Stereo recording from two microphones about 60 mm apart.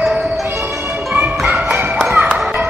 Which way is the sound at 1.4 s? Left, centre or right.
Right.